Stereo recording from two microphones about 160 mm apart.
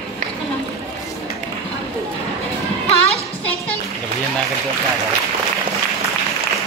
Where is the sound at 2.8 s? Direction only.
40° left (ahead or behind).